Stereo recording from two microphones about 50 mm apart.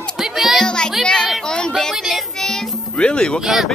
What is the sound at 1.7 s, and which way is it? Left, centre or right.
Child singing, centre.